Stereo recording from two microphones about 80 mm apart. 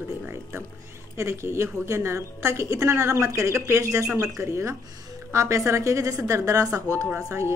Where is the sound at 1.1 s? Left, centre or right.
Right.